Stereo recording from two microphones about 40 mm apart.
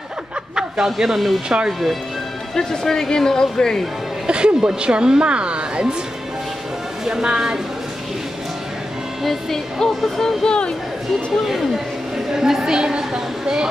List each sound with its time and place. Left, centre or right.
0.8 s speech: centre
2.5 s speech: centre
4.3 s speech: right
7.1 s speech: centre
9.2 s speech: centre
9.8 s speech: centre
12.3 s a woman's voice: centre
12.7 s a woman's voice: right